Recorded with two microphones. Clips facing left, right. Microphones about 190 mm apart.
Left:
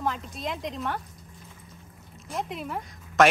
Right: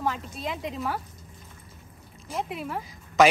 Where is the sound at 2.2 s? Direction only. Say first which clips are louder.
Right 1 dB; centre (ahead or behind).